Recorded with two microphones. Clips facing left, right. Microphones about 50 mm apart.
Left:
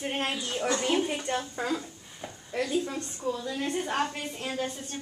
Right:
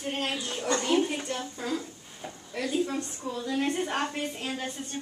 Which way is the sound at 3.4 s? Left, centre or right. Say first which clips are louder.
Right 3 dB; right.